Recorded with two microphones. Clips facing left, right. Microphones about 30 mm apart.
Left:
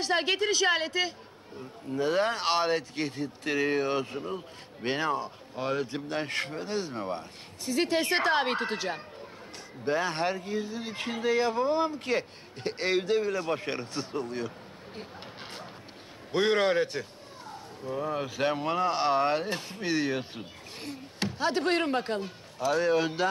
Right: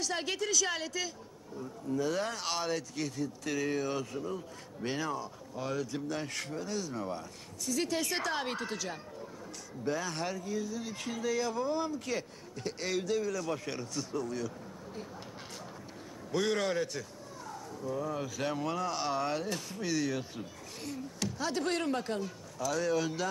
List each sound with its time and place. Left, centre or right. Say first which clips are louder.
0.0 s speech: left 7 dB; left
16.3 s speech: left 6 dB; left